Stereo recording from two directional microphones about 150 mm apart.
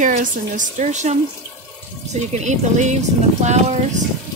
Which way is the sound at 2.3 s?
50° right (ahead or behind).